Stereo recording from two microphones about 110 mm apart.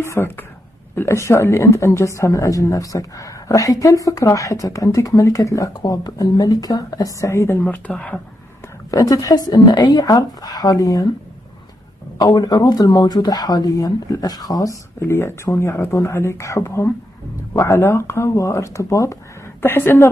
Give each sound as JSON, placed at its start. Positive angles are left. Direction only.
{"t": 0.0, "sound": "a woman's voice", "side_deg": 20}
{"t": 7.6, "sound": "speech", "side_deg": 15}
{"t": 8.9, "sound": "a woman's voice", "side_deg": 30}
{"t": 12.2, "sound": "a woman's voice", "side_deg": 35}